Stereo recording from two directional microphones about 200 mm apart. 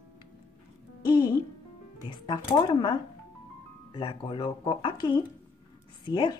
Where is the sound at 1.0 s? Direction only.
20° left (ahead or behind).